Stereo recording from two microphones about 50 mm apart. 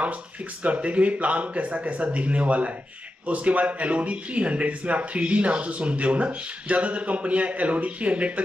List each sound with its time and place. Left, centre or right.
0.0 s speech: right